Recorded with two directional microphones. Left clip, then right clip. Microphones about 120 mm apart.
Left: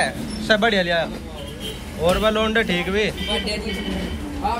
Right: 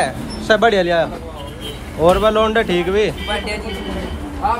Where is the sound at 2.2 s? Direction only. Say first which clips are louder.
Right 5 dB; 20° right (ahead or behind).